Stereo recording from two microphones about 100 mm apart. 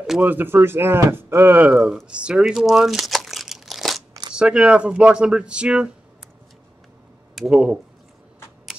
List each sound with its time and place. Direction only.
0.2 s speech: 20° right (ahead or behind)
1.7 s speech: 10° right (ahead or behind)
2.0 s crumpling: 10° right (ahead or behind)
4.4 s speech: 10° right (ahead or behind)
7.3 s speech: 5° right (ahead or behind)